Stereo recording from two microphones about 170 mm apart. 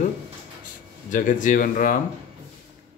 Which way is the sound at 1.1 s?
50° left (ahead or behind).